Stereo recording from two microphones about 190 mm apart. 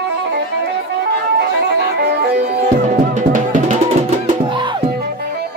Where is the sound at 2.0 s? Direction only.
60° right (ahead or behind).